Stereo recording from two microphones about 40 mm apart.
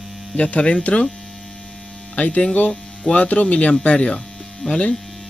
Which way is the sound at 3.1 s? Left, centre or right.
Left.